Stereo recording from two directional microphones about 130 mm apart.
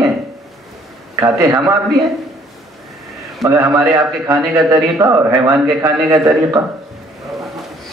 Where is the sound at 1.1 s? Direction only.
25° right (ahead or behind).